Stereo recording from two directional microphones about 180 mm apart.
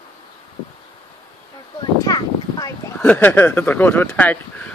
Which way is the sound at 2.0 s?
20° left (ahead or behind).